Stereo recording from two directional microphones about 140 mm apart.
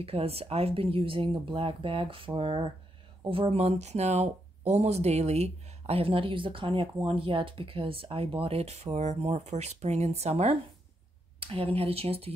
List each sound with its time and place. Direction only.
0.0 s speech: 45° right (ahead or behind)